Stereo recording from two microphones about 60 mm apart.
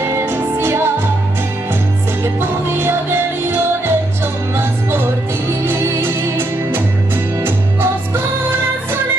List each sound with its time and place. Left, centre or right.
0.2 s music: right
2.2 s music: right
5.7 s music: right